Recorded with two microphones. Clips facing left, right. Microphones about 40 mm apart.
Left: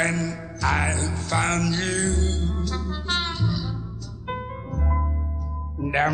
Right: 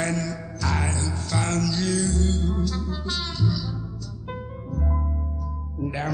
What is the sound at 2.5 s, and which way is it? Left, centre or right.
Music, left.